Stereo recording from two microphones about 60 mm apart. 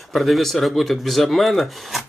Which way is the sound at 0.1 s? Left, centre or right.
Centre.